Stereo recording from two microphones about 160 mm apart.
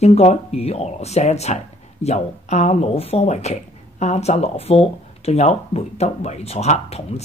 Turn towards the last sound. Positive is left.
turn(degrees=40)  # may be behind; listen again after turning